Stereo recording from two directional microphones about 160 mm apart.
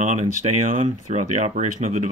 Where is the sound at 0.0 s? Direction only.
50° right (ahead or behind).